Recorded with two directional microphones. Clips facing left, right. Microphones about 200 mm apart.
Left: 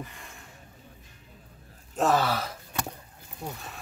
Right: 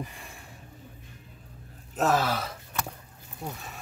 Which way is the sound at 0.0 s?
10° right (ahead or behind).